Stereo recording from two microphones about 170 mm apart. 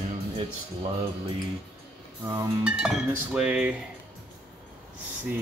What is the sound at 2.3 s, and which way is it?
Cutlery, 10° right (ahead or behind).